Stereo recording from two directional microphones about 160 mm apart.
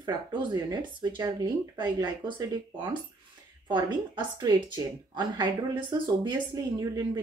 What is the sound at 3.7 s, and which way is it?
Speech, 30° right (ahead or behind).